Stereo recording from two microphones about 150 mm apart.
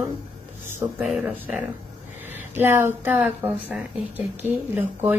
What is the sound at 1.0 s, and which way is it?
Speech, 5° right (ahead or behind).